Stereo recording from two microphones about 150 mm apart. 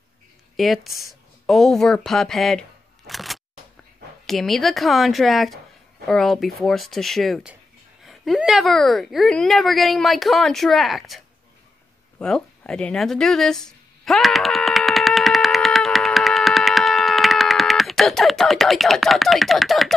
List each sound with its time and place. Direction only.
0.6 s a woman's voice: centre (ahead or behind)
3.1 s single-lens reflex camera: centre (ahead or behind)
4.3 s a woman's voice: centre (ahead or behind)
14.0 s a sound: centre (ahead or behind)